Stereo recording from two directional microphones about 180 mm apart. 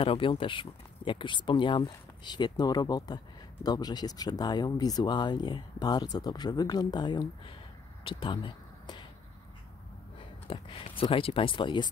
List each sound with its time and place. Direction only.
0.0 s speech: 30° left (ahead or behind)
8.0 s a sound: 30° left (ahead or behind)
10.5 s speech: 30° left (ahead or behind)